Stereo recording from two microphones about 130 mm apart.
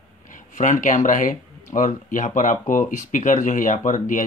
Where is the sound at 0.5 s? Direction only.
75° left (ahead or behind).